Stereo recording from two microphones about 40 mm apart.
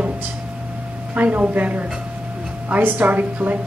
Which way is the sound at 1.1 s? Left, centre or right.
Right.